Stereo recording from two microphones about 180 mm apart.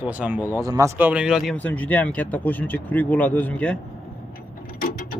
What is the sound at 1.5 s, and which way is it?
Speech, 10° left (ahead or behind).